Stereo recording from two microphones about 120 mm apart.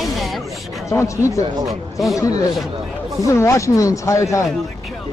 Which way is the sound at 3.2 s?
25° left (ahead or behind).